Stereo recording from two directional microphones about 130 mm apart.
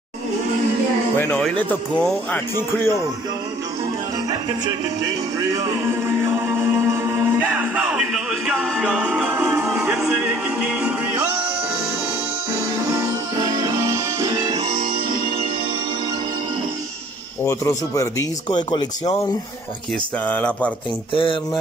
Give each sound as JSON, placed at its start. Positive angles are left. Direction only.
{"t": 1.1, "sound": "speech", "side_deg": 15}
{"t": 4.3, "sound": "music", "side_deg": -30}
{"t": 5.6, "sound": "music", "side_deg": -20}
{"t": 12.5, "sound": "music", "side_deg": -25}
{"t": 17.5, "sound": "speech", "side_deg": 25}
{"t": 18.7, "sound": "speech", "side_deg": 35}
{"t": 20.2, "sound": "speech", "side_deg": 10}
{"t": 21.1, "sound": "speech", "side_deg": 40}